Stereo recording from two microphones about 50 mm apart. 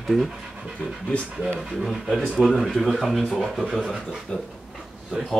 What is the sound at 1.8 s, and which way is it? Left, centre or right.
Speech, centre.